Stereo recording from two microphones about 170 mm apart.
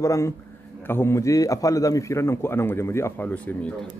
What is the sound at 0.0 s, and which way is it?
A man's voice, 15° left (ahead or behind).